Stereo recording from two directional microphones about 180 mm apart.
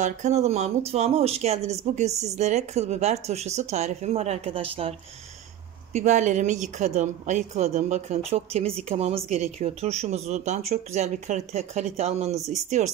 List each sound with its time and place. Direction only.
0.0 s speech: 40° right (ahead or behind)
5.9 s speech: 40° right (ahead or behind)